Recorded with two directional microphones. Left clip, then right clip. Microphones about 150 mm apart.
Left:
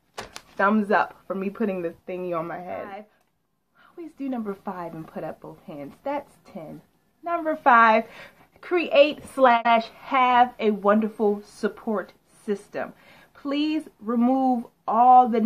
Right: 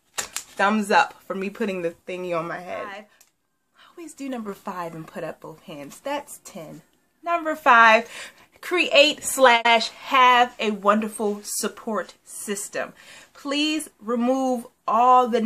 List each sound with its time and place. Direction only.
0.6 s a woman's voice: 35° right (ahead or behind)
4.2 s a woman's voice: 25° right (ahead or behind)